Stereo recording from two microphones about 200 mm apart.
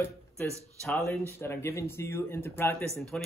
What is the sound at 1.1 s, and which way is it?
Speech, 10° left (ahead or behind).